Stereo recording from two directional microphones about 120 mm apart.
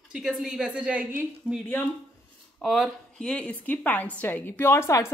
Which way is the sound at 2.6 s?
Centre (ahead or behind).